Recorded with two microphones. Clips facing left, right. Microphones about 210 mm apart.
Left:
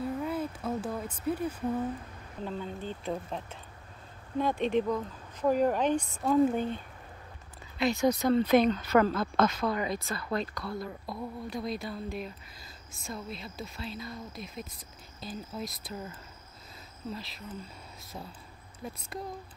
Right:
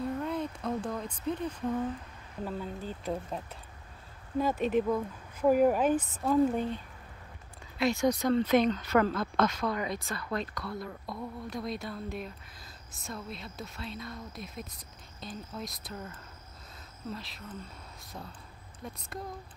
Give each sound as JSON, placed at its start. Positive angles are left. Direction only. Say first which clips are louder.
{"t": 0.0, "sound": "a sound", "louder": "even", "side_deg": 5}
{"t": 2.4, "sound": "speech", "louder": "even", "side_deg": -5}
{"t": 7.7, "sound": "speech", "louder": "left 1 dB", "side_deg": 0}
{"t": 8.3, "sound": "a woman's voice", "louder": "left 2 dB", "side_deg": 35}
{"t": 9.8, "sound": "speech", "louder": "left 2 dB", "side_deg": 0}